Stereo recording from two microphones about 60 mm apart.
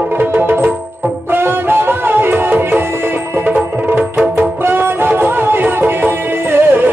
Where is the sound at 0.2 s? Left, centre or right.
Right.